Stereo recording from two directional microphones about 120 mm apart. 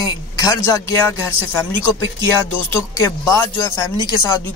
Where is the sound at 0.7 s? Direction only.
25° left (ahead or behind).